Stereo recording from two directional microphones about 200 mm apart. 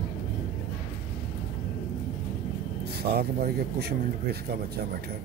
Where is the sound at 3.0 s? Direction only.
50° right (ahead or behind).